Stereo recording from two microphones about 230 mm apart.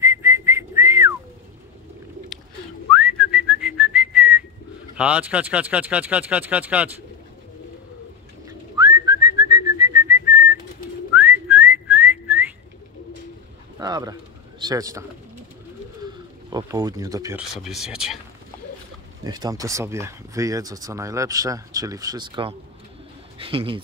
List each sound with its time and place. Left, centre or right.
0.0 s whistling: centre
2.9 s whistling: centre
4.9 s speech: centre
8.7 s whistling: centre
13.7 s bird: centre
14.6 s speech: centre
16.5 s speech: centre
17.4 s speech: centre
19.2 s speech: centre